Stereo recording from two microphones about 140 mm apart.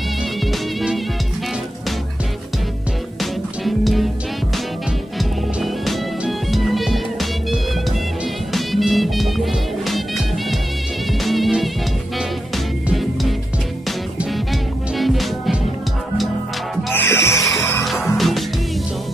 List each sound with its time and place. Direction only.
0.5 s music: centre (ahead or behind)
3.2 s music: centre (ahead or behind)
5.2 s music: centre (ahead or behind)
8.5 s music: centre (ahead or behind)
14.3 s music: centre (ahead or behind)
16.9 s music: 15° left (ahead or behind)
17.8 s music: centre (ahead or behind)